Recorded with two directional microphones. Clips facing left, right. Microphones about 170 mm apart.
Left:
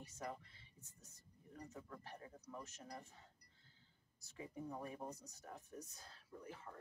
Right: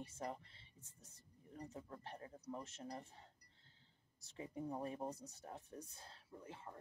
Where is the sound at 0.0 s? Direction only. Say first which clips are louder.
Right 2 dB; 30° right (ahead or behind).